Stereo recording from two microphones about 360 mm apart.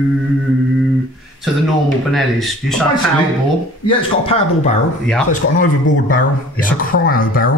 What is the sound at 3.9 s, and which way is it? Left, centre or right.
Speech, centre.